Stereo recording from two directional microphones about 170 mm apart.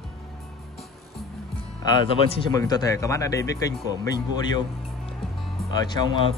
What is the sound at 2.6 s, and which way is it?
Speech, 20° left (ahead or behind).